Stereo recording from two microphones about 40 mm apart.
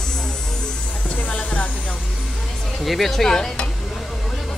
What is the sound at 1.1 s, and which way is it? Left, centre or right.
Music, left.